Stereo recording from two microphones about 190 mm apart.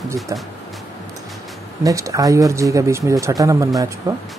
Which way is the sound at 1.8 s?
15° right (ahead or behind).